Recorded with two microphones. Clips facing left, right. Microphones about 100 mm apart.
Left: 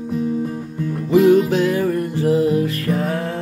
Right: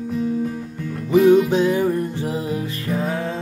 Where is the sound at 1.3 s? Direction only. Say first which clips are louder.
Right 2 dB; 20° right (ahead or behind).